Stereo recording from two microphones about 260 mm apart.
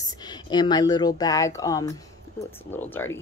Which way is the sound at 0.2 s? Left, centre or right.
Centre.